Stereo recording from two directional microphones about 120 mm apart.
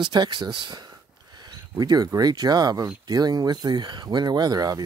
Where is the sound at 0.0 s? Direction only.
40° right (ahead or behind).